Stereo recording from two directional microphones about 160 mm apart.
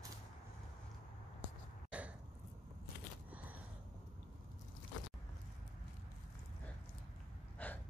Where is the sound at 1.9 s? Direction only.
10° right (ahead or behind).